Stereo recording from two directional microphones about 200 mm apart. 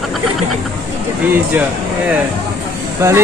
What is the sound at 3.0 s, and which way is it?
Speech, 15° right (ahead or behind).